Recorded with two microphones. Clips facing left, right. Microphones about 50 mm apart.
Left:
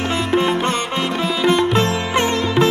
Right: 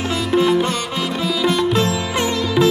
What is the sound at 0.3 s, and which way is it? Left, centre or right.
Music, left.